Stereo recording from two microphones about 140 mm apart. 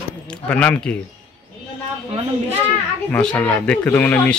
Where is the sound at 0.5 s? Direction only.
10° left (ahead or behind).